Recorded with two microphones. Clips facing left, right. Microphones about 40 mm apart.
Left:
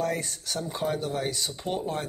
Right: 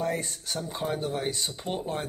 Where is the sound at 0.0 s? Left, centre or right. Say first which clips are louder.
Left 1 dB; right.